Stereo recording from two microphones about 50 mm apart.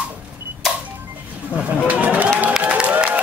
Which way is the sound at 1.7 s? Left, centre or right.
Right.